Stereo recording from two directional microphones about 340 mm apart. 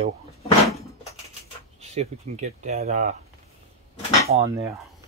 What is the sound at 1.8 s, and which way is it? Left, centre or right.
Speech, centre.